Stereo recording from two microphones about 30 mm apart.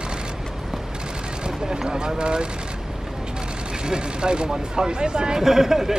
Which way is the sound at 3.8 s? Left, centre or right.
Right.